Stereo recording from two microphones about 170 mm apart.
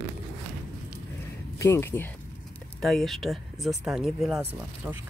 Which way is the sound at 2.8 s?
Centre (ahead or behind).